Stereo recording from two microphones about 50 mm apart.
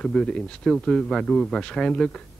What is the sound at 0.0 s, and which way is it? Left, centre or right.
A man's voice, centre.